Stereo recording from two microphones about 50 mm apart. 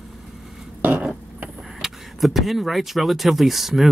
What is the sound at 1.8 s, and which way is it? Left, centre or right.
Speech, centre.